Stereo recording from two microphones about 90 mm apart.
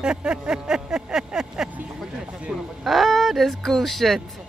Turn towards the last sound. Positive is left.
turn(degrees=0)  # may be behind; listen again after turning